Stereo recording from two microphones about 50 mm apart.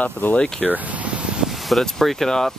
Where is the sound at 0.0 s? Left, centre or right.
Left.